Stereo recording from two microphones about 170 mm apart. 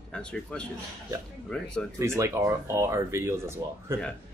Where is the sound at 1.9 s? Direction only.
15° right (ahead or behind).